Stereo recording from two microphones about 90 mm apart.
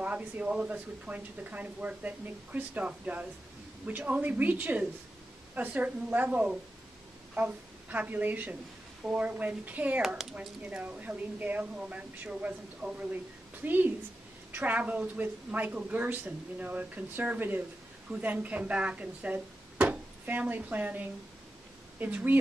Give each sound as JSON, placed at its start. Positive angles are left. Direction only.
{"t": 0.0, "sound": "a woman's voice", "side_deg": -15}